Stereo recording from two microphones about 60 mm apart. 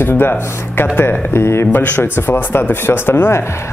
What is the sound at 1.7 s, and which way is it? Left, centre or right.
Speech, left.